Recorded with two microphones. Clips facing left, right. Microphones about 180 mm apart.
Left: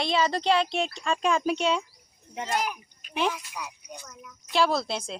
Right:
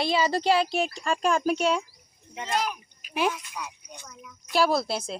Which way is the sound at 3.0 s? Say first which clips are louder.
Right 1 dB; 5° right (ahead or behind).